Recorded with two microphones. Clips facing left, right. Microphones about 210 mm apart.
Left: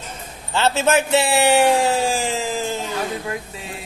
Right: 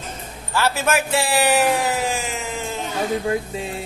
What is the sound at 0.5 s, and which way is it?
A man's voice, 25° left (ahead or behind).